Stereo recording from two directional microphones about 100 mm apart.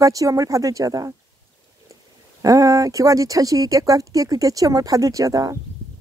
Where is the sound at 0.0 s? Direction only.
35° right (ahead or behind).